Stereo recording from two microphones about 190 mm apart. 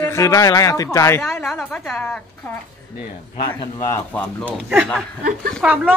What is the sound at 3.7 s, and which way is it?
A woman's voice, 15° left (ahead or behind).